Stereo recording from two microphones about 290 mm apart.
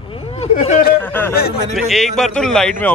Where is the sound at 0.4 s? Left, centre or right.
Left.